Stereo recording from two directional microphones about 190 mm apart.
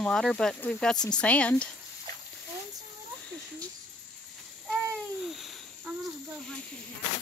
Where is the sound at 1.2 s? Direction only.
5° left (ahead or behind).